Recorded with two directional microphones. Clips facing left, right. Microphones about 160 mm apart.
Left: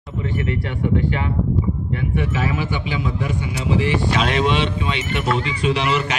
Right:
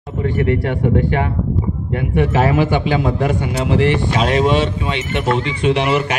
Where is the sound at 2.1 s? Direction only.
60° right (ahead or behind).